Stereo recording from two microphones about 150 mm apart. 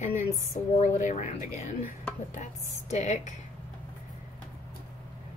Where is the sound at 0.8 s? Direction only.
55° left (ahead or behind).